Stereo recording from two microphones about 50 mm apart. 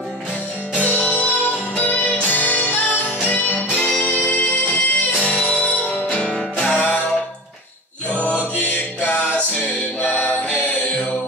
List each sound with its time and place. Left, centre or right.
0.7 s music: left
6.1 s music: centre
8.1 s music: left